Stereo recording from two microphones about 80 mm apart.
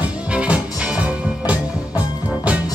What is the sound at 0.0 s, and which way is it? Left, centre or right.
Music, centre.